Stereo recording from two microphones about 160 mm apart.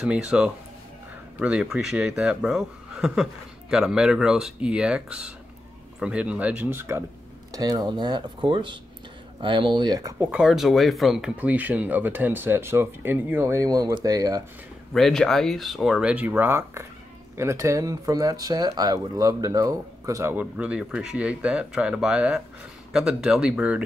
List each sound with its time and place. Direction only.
0.0 s speech: 5° right (ahead or behind)
7.5 s speech: 25° right (ahead or behind)
10.1 s speech: 5° right (ahead or behind); by 14.4 s 20° right (ahead or behind)
14.9 s speech: centre (ahead or behind)